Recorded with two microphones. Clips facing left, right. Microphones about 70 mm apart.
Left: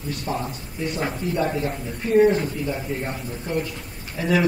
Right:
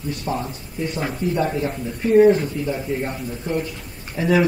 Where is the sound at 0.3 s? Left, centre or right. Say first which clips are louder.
Right 2 dB; centre.